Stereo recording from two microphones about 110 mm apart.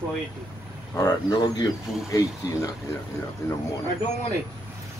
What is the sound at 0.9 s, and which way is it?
Speech, 30° left (ahead or behind).